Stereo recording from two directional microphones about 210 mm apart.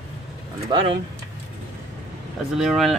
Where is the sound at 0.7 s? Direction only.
25° right (ahead or behind).